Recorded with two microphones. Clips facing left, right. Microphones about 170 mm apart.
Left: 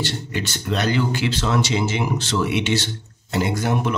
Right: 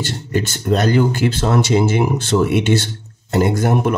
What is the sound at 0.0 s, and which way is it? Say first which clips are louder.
A man's voice: right 5 dB; 45° right (ahead or behind).